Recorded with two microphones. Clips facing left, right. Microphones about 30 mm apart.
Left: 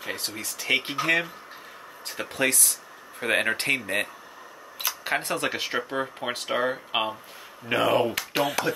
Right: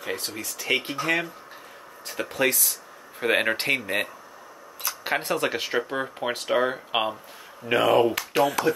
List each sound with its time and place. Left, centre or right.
0.0 s a sound: centre
0.4 s speech: centre
0.8 s speech: left
2.0 s speech: centre